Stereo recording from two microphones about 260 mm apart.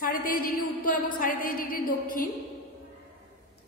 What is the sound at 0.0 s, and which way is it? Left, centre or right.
A woman's voice, left.